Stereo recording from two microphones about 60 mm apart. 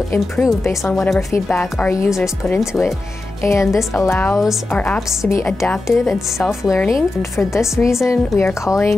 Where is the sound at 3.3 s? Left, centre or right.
Left.